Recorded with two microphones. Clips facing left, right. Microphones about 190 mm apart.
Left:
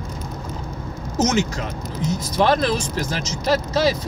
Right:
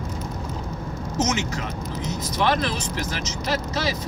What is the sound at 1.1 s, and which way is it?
Speech, 35° left (ahead or behind).